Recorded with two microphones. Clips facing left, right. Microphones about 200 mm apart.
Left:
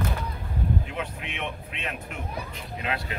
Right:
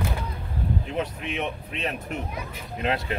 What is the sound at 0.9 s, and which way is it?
Speech, 40° right (ahead or behind).